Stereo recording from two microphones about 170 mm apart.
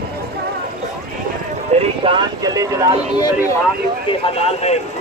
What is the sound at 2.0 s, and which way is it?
Speech, 25° right (ahead or behind).